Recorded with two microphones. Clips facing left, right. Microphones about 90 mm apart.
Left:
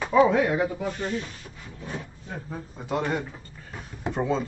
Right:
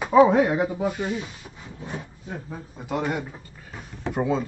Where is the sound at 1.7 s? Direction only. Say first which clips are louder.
Right 1 dB; 20° right (ahead or behind).